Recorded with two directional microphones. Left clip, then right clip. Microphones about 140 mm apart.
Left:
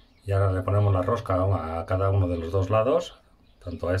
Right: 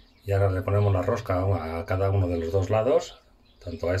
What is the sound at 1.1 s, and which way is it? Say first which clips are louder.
Speech: left 1 dB; 10° left (ahead or behind).